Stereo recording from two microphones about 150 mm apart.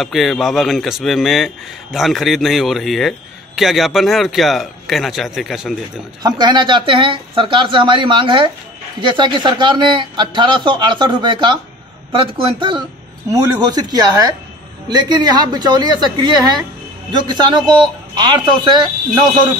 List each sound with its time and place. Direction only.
0.0 s speech: centre (ahead or behind)
6.2 s a woman's voice: 30° right (ahead or behind)